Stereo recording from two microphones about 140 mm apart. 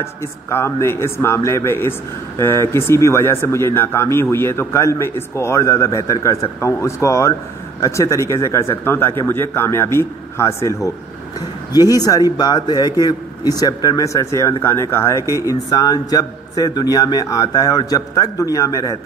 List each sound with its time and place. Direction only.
0.0 s a man's voice: 20° left (ahead or behind)